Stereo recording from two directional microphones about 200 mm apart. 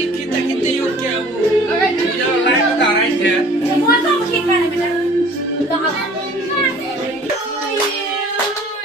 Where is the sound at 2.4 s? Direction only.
65° left (ahead or behind).